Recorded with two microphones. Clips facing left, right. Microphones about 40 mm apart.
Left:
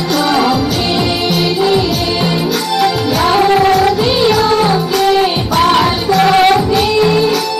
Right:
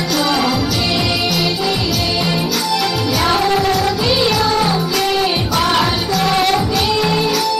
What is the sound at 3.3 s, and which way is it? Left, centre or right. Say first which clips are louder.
Music: left 6 dB; centre.